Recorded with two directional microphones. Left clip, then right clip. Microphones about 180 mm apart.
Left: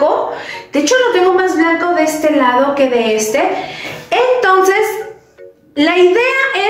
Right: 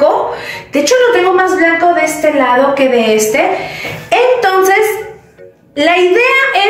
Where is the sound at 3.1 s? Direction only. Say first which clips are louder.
Right 3 dB; centre (ahead or behind).